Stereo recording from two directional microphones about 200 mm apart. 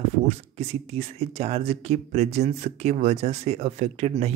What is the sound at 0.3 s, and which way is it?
Speech, 30° right (ahead or behind).